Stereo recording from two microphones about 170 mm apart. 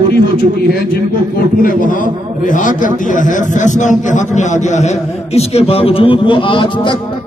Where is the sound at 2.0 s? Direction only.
50° left (ahead or behind).